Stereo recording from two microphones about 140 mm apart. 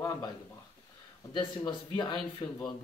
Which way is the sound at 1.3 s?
30° left (ahead or behind).